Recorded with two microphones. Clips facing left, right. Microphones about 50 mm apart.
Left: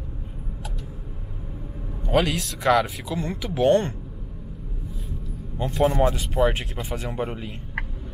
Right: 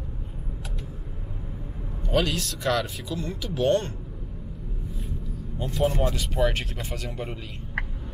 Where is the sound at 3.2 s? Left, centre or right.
Left.